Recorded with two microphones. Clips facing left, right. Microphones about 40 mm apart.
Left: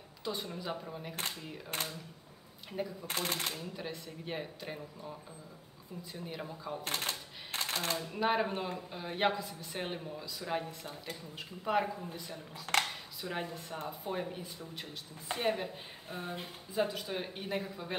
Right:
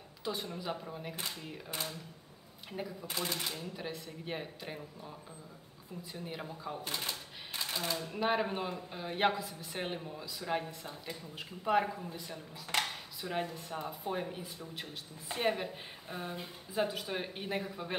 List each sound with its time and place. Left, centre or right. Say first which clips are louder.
0.2 s speech: even; centre
1.7 s speech: left 2 dB; left
2.7 s speech: left 2 dB; centre
3.1 s speech: even; left
3.5 s speech: even; centre
6.2 s speech: even; centre
6.8 s typewriter: left 2 dB; left
8.1 s speech: left 1 dB; centre
13.2 s speech: right 2 dB; centre